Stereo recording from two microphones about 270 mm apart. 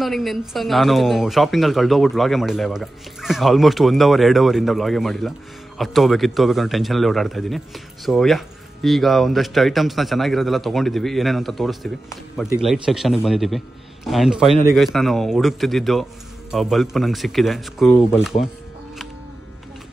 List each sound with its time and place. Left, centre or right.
0.0 s a man's voice: centre